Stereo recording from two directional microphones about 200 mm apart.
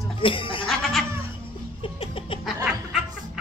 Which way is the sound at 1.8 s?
25° left (ahead or behind).